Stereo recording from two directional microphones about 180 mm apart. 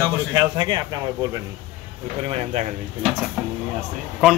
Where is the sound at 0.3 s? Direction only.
25° right (ahead or behind).